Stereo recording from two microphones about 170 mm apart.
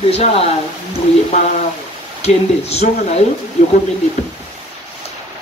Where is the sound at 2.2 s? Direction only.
40° left (ahead or behind).